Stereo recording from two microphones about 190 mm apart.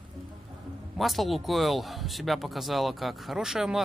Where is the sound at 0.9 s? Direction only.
Centre (ahead or behind).